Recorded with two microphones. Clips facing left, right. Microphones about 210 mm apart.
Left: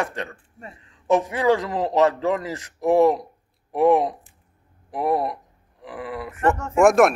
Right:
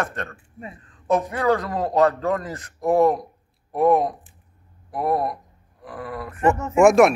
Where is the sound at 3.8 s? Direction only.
15° left (ahead or behind).